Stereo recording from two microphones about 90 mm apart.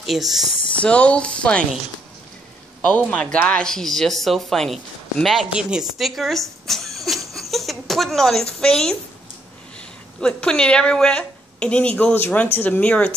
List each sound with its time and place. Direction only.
0.0 s speech: centre (ahead or behind)
0.5 s a sound: 70° left (ahead or behind)
0.7 s speech: 15° left (ahead or behind)
2.9 s speech: 15° left (ahead or behind)